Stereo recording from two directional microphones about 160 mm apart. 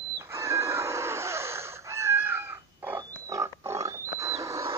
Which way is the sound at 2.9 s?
20° right (ahead or behind).